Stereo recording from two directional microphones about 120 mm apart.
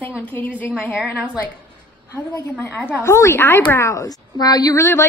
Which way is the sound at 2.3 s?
15° left (ahead or behind).